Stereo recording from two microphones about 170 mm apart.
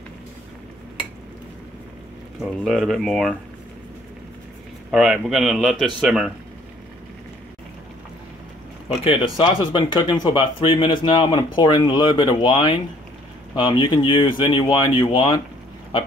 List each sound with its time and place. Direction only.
2.6 s a man's voice: centre (ahead or behind)
4.9 s a man's voice: centre (ahead or behind)
8.8 s speech: 35° left (ahead or behind)